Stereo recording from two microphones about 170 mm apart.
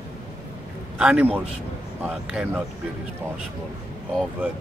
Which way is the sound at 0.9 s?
5° right (ahead or behind).